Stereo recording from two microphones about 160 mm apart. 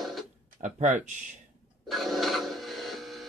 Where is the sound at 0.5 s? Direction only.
50° right (ahead or behind).